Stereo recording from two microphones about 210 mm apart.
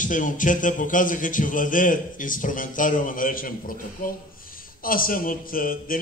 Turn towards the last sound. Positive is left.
turn(degrees=40)  # may be behind; listen again after turning